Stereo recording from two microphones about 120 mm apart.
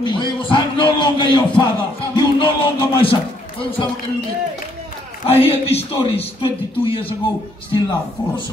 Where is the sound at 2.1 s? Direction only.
40° left (ahead or behind).